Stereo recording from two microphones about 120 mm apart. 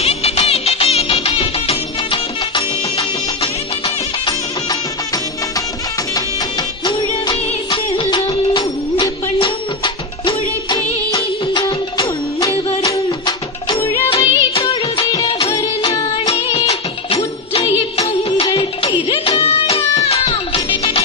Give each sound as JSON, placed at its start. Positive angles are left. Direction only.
{"t": 0.0, "sound": "music", "side_deg": 60}
{"t": 4.3, "sound": "music", "side_deg": 35}
{"t": 6.8, "sound": "music", "side_deg": 40}
{"t": 9.4, "sound": "music of bollywood", "side_deg": 45}
{"t": 13.7, "sound": "music", "side_deg": 20}
{"t": 14.0, "sound": "music of bollywood", "side_deg": 50}
{"t": 17.5, "sound": "music", "side_deg": 55}
{"t": 18.4, "sound": "music", "side_deg": 50}